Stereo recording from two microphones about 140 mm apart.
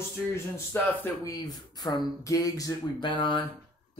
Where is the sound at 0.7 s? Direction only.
25° left (ahead or behind).